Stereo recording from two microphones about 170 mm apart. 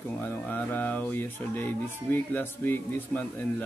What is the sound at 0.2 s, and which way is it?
Speech, 10° left (ahead or behind).